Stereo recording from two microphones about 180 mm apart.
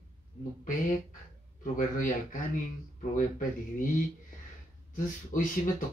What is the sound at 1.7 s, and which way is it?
Speech, 45° left (ahead or behind).